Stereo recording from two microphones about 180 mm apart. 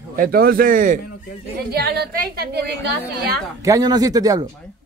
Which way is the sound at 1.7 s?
60° right (ahead or behind).